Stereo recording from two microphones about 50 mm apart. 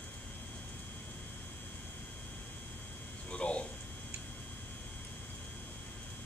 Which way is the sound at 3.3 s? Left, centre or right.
Left.